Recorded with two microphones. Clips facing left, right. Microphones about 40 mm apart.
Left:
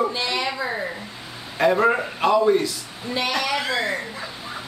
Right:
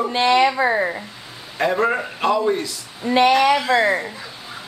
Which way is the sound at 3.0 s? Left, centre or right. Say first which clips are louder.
Right 10 dB; right.